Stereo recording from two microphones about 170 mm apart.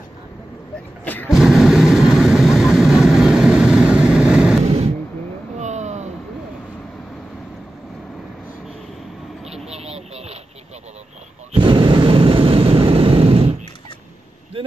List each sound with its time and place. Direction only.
1.0 s vehicle: 10° left (ahead or behind)
1.3 s vehicle: centre (ahead or behind)
4.6 s a sound: 40° right (ahead or behind)
9.7 s vehicle: 40° right (ahead or behind)
11.5 s vehicle: 30° right (ahead or behind)